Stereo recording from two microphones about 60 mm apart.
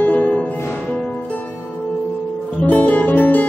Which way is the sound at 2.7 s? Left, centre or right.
Left.